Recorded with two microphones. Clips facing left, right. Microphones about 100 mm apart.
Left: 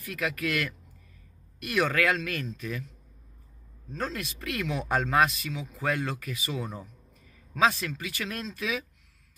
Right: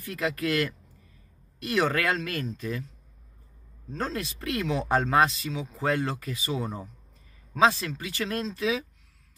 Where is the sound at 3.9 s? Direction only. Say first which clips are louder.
Right 2 dB; 30° right (ahead or behind).